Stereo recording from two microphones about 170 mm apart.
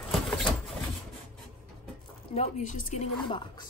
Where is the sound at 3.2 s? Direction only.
30° left (ahead or behind).